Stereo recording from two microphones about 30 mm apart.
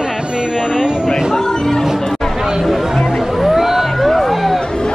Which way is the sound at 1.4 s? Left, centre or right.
Centre.